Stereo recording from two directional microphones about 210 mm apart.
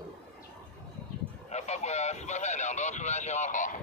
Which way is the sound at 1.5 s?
35° left (ahead or behind).